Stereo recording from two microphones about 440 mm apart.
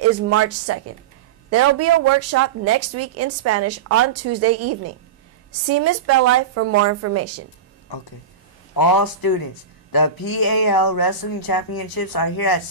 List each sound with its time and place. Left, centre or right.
0.3 s speech: right
8.7 s speech: left